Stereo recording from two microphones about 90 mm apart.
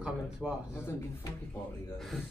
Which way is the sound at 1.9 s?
Centre (ahead or behind).